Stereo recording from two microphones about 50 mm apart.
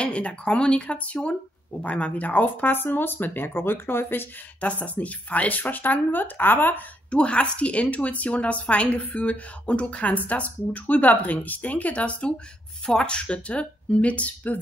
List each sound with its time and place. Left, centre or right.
0.0 s a woman's voice: left
4.6 s speech: left
7.1 s a woman's voice: left